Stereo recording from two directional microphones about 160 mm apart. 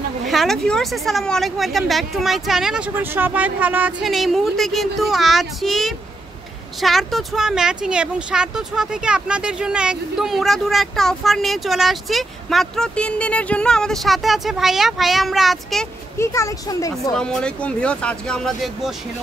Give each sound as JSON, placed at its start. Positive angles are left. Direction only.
{"t": 0.3, "sound": "speech", "side_deg": 0}
{"t": 16.2, "sound": "speech", "side_deg": 20}
{"t": 17.1, "sound": "speech", "side_deg": 5}